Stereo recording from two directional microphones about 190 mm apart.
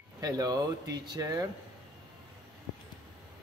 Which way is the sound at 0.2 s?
20° right (ahead or behind).